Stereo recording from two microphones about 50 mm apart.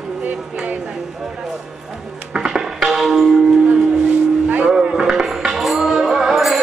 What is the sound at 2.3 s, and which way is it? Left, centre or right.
Music, centre.